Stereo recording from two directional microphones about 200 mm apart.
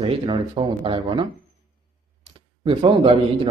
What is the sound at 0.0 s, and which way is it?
Speech, 30° right (ahead or behind).